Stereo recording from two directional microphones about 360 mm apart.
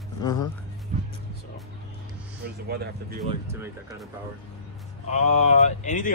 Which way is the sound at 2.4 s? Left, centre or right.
Right.